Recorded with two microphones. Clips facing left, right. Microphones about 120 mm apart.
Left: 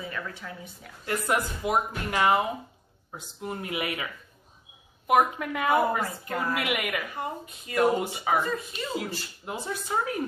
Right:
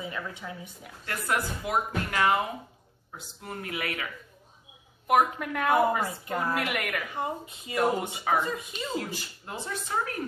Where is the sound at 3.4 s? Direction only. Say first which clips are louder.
Left 3 dB; 20° left (ahead or behind).